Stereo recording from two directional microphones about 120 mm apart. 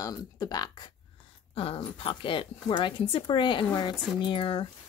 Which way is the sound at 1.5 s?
50° left (ahead or behind).